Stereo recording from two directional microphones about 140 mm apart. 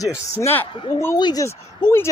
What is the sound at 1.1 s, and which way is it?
Speech, 30° left (ahead or behind).